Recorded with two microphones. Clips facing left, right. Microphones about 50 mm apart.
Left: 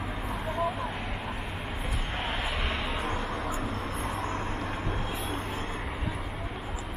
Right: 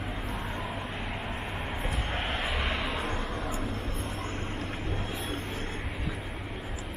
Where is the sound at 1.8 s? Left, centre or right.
Centre.